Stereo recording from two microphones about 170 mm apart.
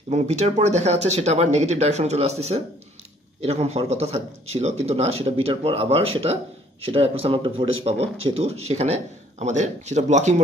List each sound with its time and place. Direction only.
0.1 s speech: 40° right (ahead or behind)